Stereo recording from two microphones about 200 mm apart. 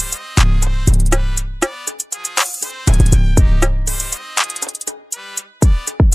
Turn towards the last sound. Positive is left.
turn(degrees=0)  # may be behind; listen again after turning